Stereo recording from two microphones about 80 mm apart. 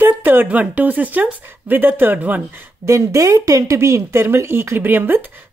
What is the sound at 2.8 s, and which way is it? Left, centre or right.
Speech, right.